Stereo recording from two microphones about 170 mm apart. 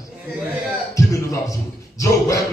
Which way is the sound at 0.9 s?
20° left (ahead or behind).